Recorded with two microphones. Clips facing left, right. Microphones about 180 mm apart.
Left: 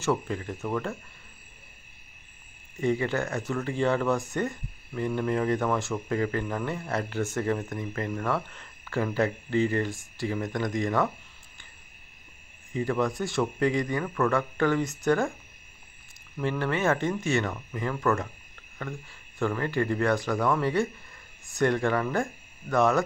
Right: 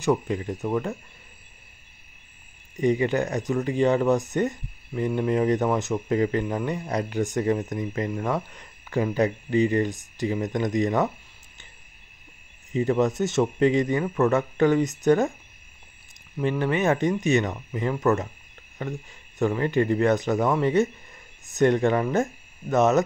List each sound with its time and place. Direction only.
0.0 s speech: 15° right (ahead or behind)
2.8 s speech: 15° right (ahead or behind)
12.7 s speech: 20° right (ahead or behind)
16.3 s speech: 15° right (ahead or behind)